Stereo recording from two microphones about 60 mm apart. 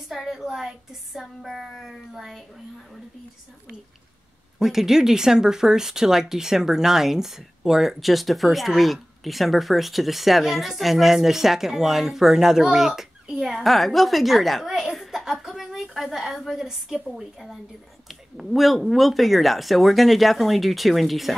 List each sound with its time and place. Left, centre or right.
0.1 s speech: centre
4.6 s speech: centre